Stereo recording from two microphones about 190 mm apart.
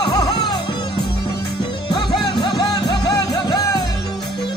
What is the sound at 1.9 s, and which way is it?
Music, 25° left (ahead or behind).